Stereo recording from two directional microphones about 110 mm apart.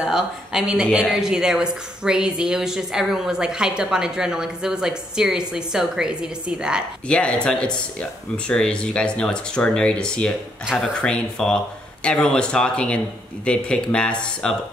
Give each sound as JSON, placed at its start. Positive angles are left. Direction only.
{"t": 0.0, "sound": "speech", "side_deg": -5}
{"t": 7.1, "sound": "speech", "side_deg": 10}